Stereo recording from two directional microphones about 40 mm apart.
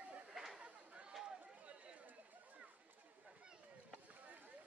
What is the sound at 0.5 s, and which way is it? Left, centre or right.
Chatter, right.